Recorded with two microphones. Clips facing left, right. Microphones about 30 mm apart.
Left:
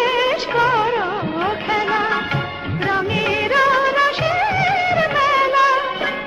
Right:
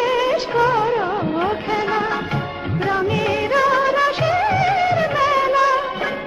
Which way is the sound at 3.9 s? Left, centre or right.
Centre.